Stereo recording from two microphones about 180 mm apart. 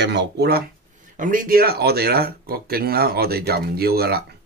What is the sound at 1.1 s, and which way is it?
Speech, 50° right (ahead or behind).